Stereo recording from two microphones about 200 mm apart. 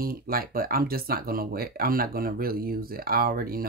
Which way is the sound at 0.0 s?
45° right (ahead or behind).